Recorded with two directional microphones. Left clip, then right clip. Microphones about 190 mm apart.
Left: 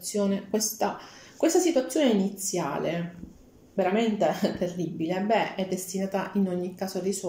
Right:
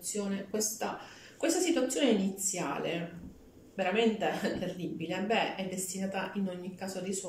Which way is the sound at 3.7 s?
35° left (ahead or behind).